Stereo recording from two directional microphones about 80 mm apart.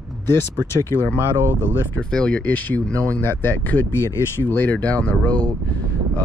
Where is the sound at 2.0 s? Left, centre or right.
Centre.